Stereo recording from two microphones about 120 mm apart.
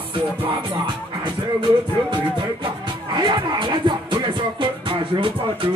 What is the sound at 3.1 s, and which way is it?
Music, 40° right (ahead or behind).